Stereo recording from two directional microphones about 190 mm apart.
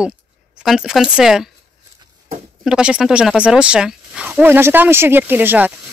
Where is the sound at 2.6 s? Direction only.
5° right (ahead or behind).